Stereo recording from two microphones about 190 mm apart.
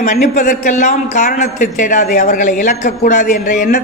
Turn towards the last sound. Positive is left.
turn(degrees=45)  # may be behind; listen again after turning